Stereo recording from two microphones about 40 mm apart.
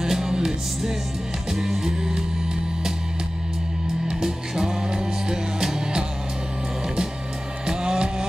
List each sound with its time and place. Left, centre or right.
0.0 s music: centre
4.1 s music: centre
7.6 s music: centre